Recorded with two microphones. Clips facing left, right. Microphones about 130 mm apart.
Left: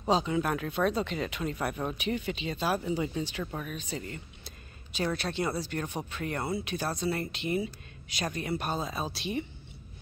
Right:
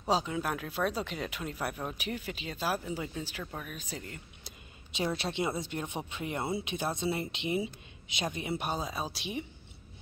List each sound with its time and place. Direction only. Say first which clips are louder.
0.1 s speech: left 3 dB; 5° right (ahead or behind)
4.5 s speech: left 1 dB; 20° right (ahead or behind)